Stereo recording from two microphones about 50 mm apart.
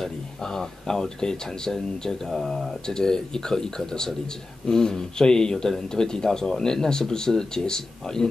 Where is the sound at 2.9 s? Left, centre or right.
Centre.